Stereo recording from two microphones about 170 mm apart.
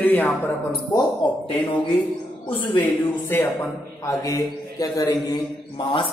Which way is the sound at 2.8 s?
10° left (ahead or behind).